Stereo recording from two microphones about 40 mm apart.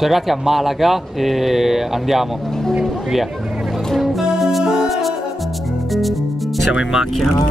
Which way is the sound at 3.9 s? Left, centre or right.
Centre.